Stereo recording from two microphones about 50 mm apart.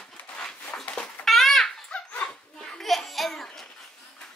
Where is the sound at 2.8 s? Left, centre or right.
Centre.